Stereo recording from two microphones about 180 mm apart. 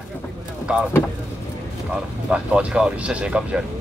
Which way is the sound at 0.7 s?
5° right (ahead or behind).